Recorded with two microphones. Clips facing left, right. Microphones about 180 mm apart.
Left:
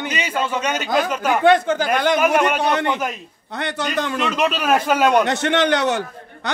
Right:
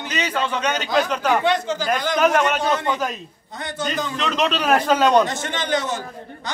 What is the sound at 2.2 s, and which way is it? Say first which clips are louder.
Speech: left 1 dB; 10° left (ahead or behind).